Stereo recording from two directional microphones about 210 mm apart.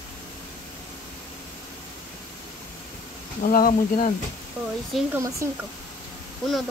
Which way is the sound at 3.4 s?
40° left (ahead or behind).